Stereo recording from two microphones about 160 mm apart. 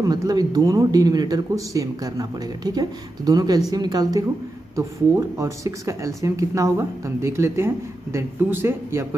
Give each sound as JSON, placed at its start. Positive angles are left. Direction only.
{"t": 0.0, "sound": "speech", "side_deg": -25}